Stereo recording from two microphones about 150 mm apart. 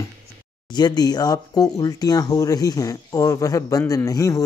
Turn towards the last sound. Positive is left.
turn(degrees=25)  # may be behind; listen again after turning